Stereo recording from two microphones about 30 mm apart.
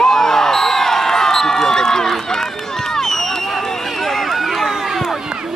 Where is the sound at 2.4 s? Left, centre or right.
Centre.